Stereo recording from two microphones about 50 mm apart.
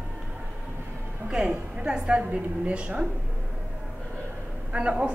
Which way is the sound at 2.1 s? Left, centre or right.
Right.